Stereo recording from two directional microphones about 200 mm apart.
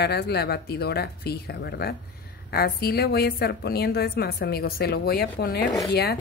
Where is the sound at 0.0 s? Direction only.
55° left (ahead or behind).